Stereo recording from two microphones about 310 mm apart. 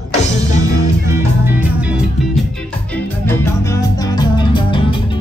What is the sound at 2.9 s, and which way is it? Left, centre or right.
Music, centre.